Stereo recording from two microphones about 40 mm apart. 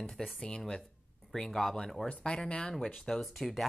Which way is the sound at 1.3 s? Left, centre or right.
Centre.